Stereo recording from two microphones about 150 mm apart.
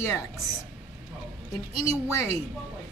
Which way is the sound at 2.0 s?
20° left (ahead or behind).